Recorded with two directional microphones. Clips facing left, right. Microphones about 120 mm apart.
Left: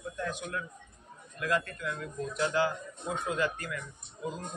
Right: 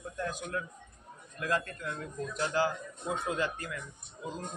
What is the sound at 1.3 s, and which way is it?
A man's voice, 35° right (ahead or behind).